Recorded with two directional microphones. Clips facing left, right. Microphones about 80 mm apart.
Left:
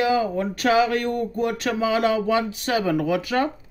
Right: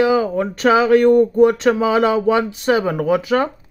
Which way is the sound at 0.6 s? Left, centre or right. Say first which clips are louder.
Right 8 dB; right.